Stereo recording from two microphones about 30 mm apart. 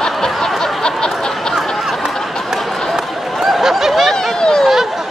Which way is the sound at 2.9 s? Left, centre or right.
Centre.